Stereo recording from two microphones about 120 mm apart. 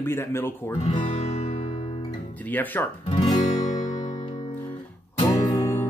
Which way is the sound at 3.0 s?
45° left (ahead or behind).